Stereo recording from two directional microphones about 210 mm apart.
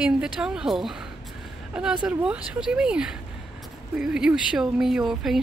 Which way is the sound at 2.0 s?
5° right (ahead or behind).